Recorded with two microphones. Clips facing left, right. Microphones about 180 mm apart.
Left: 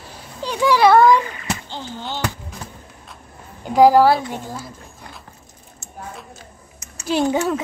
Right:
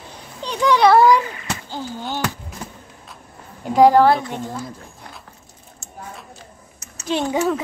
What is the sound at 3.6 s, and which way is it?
A woman's voice, centre (ahead or behind).